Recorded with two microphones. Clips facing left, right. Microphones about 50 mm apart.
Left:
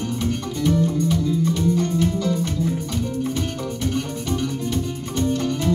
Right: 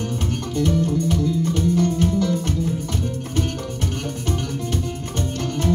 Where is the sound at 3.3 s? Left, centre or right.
Right.